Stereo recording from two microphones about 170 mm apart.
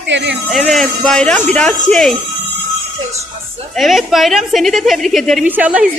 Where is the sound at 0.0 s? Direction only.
90° right.